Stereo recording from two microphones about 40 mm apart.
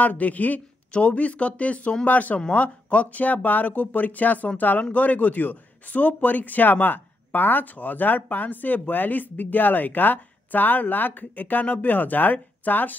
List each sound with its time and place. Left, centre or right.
0.0 s a man's voice: left